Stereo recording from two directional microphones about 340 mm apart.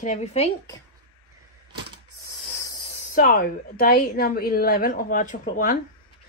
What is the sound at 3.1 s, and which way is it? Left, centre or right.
Speech, left.